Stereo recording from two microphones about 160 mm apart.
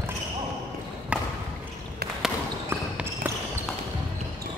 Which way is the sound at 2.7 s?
15° right (ahead or behind).